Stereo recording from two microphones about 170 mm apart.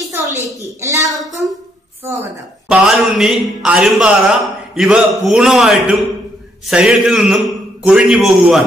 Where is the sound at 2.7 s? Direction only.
Centre (ahead or behind).